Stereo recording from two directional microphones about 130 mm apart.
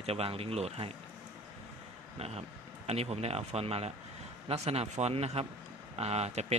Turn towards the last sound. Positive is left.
turn(degrees=-55)  # may be behind; listen again after turning